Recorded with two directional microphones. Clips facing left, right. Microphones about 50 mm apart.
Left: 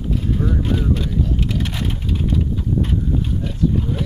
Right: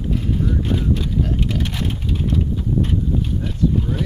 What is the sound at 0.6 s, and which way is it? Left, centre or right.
Speech, centre.